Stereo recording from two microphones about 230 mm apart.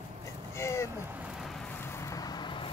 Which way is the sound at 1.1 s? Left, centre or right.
Centre.